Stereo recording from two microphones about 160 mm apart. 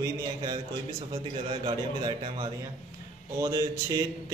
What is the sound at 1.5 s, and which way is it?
A man's voice, 30° right (ahead or behind).